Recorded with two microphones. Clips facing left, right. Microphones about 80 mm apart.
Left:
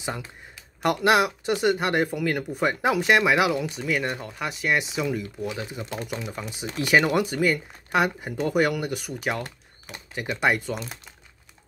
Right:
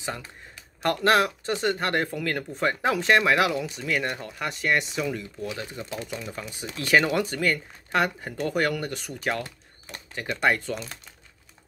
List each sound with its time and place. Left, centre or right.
0.8 s speech: centre